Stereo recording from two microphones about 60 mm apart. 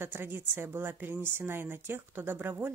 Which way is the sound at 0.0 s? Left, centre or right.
Right.